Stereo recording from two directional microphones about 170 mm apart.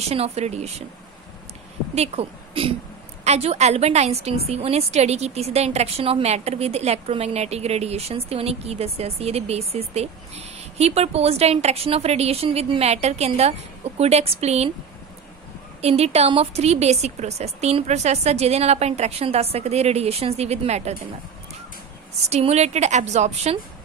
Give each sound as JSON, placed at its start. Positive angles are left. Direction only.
{"t": 0.0, "sound": "a woman's voice", "side_deg": -35}
{"t": 2.0, "sound": "a woman's voice", "side_deg": -35}
{"t": 15.8, "sound": "a woman's voice", "side_deg": -40}
{"t": 22.3, "sound": "a woman's voice", "side_deg": -40}